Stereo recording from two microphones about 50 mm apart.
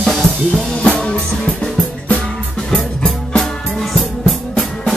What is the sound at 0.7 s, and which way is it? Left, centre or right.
Music, left.